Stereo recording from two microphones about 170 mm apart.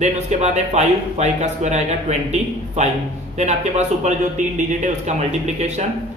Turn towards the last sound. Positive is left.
turn(degrees=-40)  # may be behind; listen again after turning